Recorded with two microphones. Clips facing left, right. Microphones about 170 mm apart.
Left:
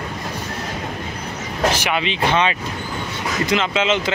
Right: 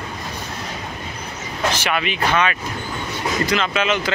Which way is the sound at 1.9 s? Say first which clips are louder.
Left 1 dB; 25° left (ahead or behind).